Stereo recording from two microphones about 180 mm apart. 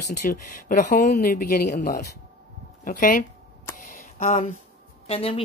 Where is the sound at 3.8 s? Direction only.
45° left (ahead or behind).